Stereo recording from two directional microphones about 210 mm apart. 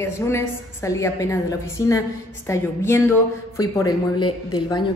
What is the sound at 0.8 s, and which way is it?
A woman's voice, 15° left (ahead or behind).